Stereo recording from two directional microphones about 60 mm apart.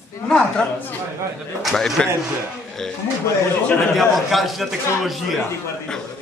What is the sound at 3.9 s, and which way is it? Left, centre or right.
A man's voice, centre.